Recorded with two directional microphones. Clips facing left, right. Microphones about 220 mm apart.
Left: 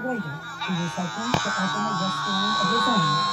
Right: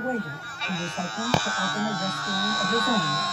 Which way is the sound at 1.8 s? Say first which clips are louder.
Even; 15° right (ahead or behind).